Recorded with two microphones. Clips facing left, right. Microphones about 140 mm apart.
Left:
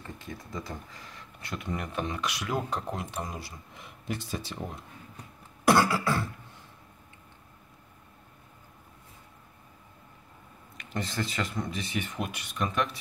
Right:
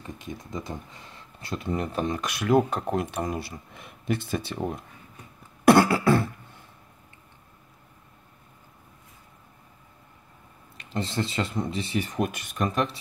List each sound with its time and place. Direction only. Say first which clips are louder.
0.0 s speech: right 4 dB; 20° right (ahead or behind); by 4.6 s 60° right (ahead or behind)
5.7 s beatboxing: right 6 dB; 55° right (ahead or behind)
10.8 s speech: right 4 dB; 25° right (ahead or behind)